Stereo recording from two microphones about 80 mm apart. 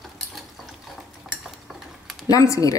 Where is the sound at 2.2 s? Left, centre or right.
Left.